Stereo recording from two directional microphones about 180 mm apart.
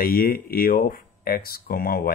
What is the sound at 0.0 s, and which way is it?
Speech, 55° left (ahead or behind).